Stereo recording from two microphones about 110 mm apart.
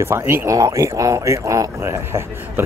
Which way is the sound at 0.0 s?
20° right (ahead or behind).